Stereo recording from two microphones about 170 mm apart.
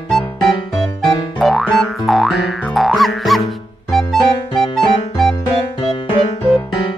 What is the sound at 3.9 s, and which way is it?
Music, centre (ahead or behind).